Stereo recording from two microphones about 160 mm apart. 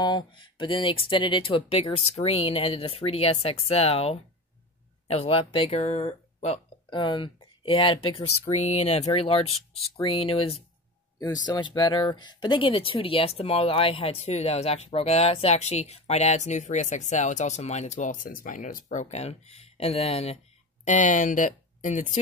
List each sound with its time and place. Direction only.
0.0 s speech: 30° left (ahead or behind)
20.8 s speech: 50° left (ahead or behind)